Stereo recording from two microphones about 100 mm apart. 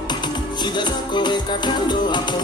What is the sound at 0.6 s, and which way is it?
Music, 50° left (ahead or behind).